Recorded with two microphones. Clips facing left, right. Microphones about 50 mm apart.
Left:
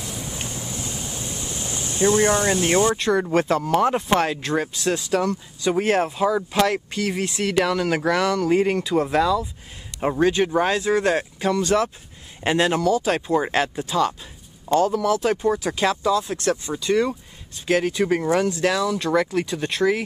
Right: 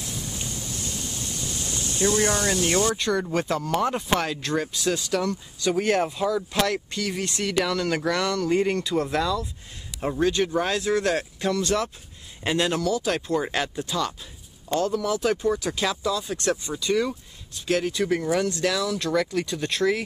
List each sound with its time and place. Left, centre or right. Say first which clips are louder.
0.7 s a sound: left 2 dB; centre
3.0 s speech: left 5 dB; centre
4.1 s speech: left 4 dB; centre
4.7 s speech: left 2 dB; centre
5.6 s speech: left 2 dB; centre
6.2 s speech: left 4 dB; centre
9.9 s speech: left 4 dB; left
18.3 s speech: left 3 dB; centre